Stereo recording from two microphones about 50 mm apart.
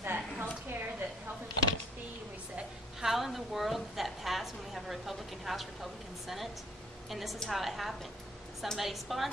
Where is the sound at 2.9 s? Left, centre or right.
Centre.